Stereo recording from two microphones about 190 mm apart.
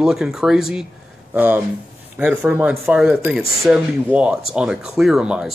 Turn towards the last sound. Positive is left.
turn(degrees=-5)  # may be behind; listen again after turning